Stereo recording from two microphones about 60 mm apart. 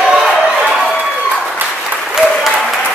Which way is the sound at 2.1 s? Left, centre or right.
Centre.